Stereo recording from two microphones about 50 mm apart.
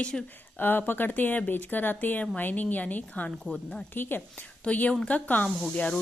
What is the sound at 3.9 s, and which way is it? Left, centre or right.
Speech, left.